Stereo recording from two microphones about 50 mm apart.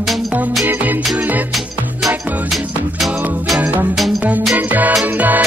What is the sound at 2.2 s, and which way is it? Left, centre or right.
Music, right.